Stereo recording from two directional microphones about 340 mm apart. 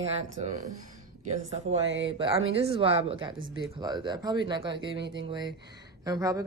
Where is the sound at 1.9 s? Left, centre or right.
Right.